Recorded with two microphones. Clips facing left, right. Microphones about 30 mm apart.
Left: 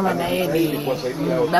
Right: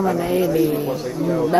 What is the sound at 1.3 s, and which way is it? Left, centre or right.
Speech, left.